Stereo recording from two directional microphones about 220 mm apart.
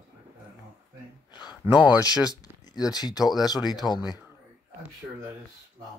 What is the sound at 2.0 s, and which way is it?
Speech, 15° left (ahead or behind).